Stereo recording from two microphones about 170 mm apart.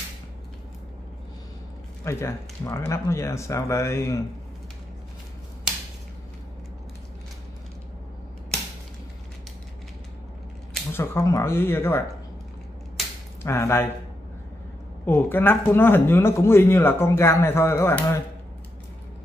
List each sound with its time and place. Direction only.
2.0 s speech: 15° left (ahead or behind)
10.9 s speech: 15° left (ahead or behind)
13.4 s speech: 15° left (ahead or behind)
15.0 s speech: 10° left (ahead or behind)